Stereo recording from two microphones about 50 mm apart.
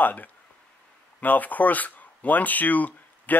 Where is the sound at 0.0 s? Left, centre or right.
Left.